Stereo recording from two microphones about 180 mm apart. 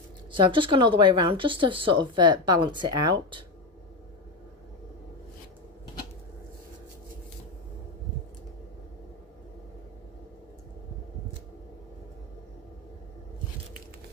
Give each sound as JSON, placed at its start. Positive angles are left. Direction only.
{"t": 0.3, "sound": "speech", "side_deg": -25}